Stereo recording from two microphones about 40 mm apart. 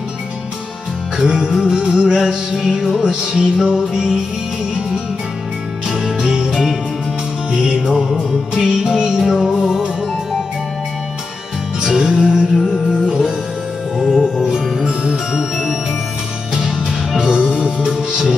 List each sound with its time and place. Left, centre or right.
1.1 s music: centre
3.0 s music: centre
5.9 s jingle bell: centre
7.9 s music: centre
11.8 s music: centre
14.4 s music: centre
17.2 s music: centre